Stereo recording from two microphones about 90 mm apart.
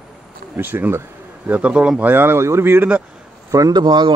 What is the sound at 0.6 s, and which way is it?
Speech, 25° right (ahead or behind).